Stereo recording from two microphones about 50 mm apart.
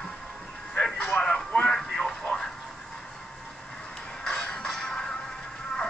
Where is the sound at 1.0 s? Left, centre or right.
Left.